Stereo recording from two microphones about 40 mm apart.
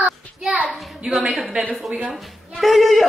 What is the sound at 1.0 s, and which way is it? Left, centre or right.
Speech, right.